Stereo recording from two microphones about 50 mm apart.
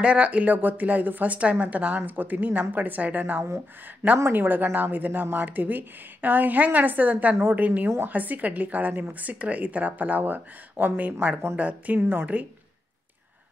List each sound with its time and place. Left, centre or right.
0.0 s speech: right
4.3 s speech: right